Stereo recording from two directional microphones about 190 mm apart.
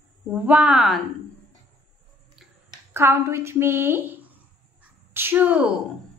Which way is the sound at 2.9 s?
15° right (ahead or behind).